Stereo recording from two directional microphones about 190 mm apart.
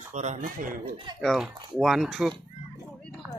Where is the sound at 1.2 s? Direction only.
Centre (ahead or behind).